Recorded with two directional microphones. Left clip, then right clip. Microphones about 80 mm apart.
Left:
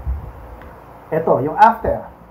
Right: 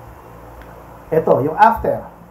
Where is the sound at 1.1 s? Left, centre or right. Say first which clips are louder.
Right 2 dB; centre.